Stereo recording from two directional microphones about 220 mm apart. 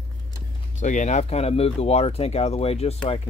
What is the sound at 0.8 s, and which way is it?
Speech, 35° left (ahead or behind).